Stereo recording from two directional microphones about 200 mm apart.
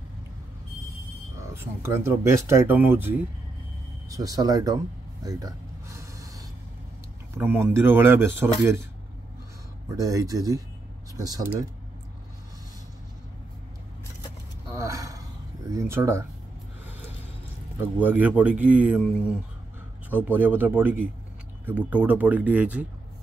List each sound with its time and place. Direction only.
1.5 s speech: 15° right (ahead or behind)
5.2 s a sound: 20° right (ahead or behind)
7.3 s speech: 10° right (ahead or behind)
9.9 s speech: 15° right (ahead or behind)
14.7 s a sound: 15° right (ahead or behind)
15.7 s speech: 15° right (ahead or behind)
17.9 s speech: 10° right (ahead or behind)
20.1 s speech: 10° right (ahead or behind)